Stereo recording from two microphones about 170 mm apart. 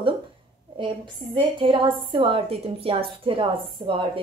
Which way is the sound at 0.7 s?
30° right (ahead or behind).